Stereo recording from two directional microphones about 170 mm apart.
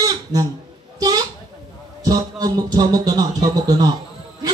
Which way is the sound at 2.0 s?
20° right (ahead or behind).